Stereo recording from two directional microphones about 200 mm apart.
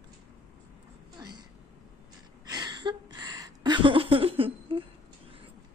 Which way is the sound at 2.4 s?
20° right (ahead or behind).